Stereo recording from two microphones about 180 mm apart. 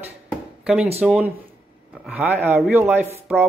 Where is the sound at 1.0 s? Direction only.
5° right (ahead or behind).